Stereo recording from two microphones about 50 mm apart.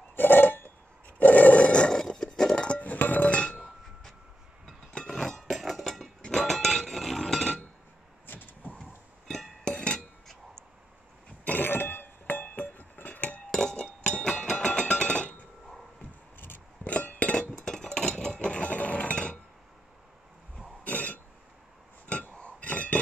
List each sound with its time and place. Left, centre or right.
0.1 s roar: left
2.0 s a sound: centre
2.3 s music: centre
2.8 s music: left
4.6 s chink: centre
8.3 s vehicle: left
9.7 s chink: centre
11.4 s a sound: left
13.5 s chink: centre
14.4 s a sound: centre
16.8 s chink: left
17.6 s chink: centre
20.8 s a sound: left
22.3 s chink: left